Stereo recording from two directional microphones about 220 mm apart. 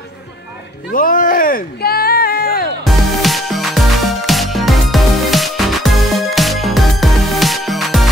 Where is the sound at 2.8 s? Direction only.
Centre (ahead or behind).